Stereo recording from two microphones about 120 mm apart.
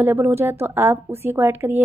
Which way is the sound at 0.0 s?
20° right (ahead or behind).